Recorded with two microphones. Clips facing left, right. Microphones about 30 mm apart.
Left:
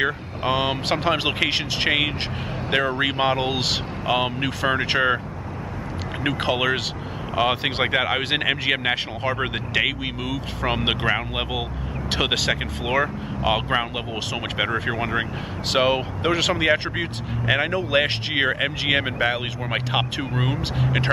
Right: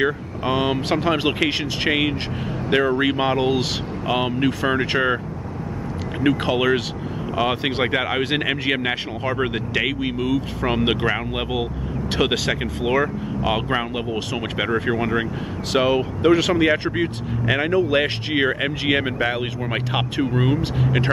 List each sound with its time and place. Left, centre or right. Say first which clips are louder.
0.0 s speech: right 2 dB; centre
4.1 s speech: right 2 dB; centre
6.2 s speech: right 3 dB; centre